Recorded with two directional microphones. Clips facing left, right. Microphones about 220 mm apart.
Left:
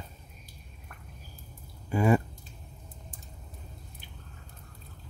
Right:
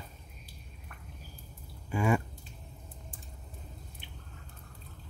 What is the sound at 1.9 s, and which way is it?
Speech, 35° left (ahead or behind).